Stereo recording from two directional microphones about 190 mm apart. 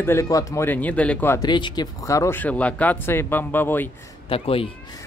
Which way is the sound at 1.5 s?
25° left (ahead or behind).